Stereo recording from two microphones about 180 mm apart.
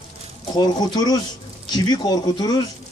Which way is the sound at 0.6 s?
20° left (ahead or behind).